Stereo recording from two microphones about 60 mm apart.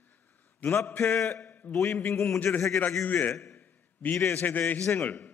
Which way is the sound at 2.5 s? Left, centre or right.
Left.